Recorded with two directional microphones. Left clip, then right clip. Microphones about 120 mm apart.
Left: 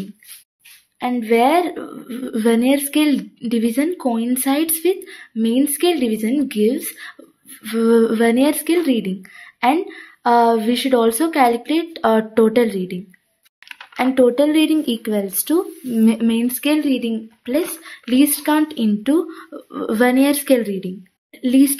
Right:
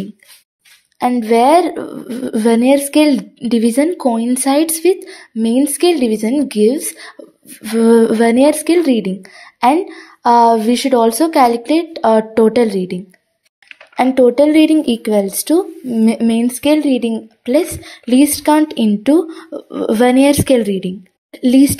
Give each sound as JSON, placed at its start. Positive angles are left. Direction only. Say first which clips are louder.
{"t": 0.9, "sound": "a woman's voice", "louder": "right 4 dB", "side_deg": -30}
{"t": 7.6, "sound": "a woman's voice", "louder": "right 5 dB", "side_deg": -35}
{"t": 14.1, "sound": "speech", "louder": "right 4 dB", "side_deg": -25}